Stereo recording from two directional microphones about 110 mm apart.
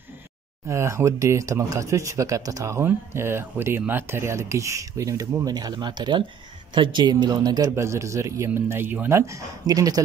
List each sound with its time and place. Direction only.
0.7 s speech: 25° right (ahead or behind)
7.7 s speech: 25° right (ahead or behind)
9.2 s speech: 30° right (ahead or behind)